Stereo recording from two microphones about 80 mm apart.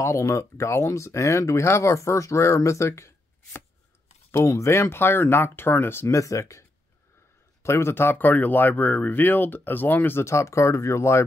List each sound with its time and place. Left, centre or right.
0.0 s speech: left
7.6 s speech: left